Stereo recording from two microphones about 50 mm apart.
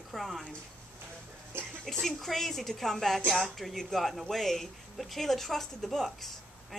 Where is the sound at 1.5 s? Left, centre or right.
Right.